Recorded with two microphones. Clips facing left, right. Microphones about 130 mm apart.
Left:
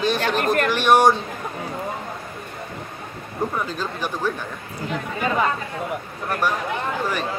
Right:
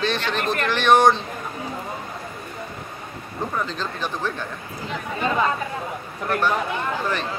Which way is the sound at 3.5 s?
10° left (ahead or behind).